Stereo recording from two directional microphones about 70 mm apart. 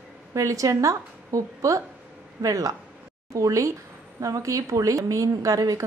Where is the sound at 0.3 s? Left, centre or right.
Right.